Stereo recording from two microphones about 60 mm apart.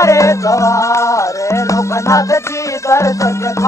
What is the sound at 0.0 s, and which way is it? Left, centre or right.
Music, left.